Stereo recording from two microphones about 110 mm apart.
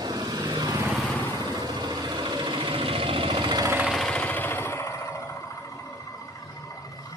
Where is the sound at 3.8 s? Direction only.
Centre (ahead or behind); by 5.2 s 25° left (ahead or behind).